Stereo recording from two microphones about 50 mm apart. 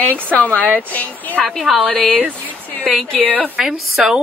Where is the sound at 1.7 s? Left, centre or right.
Centre.